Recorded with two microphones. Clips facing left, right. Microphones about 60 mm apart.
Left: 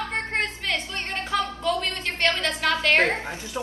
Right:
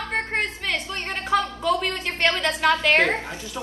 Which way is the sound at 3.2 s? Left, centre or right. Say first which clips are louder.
Left 1 dB; left.